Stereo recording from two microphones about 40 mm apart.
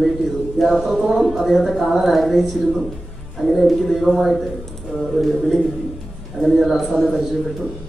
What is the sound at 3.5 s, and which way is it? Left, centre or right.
A man's voice, centre.